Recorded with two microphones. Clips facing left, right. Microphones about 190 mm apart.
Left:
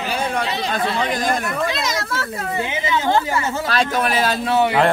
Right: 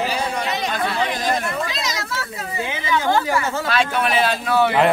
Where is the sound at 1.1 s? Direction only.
50° left (ahead or behind).